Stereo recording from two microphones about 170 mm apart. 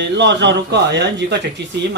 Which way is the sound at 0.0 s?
90° right.